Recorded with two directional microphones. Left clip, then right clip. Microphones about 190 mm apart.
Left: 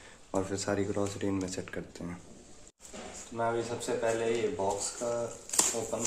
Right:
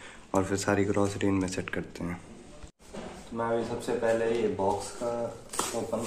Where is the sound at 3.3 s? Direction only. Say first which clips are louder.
Right 2 dB; 5° left (ahead or behind).